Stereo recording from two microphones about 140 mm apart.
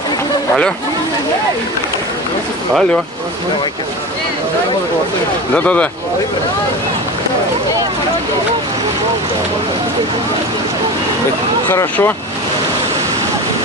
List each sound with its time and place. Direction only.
5.5 s speech: 10° left (ahead or behind)
11.7 s speech: 15° left (ahead or behind)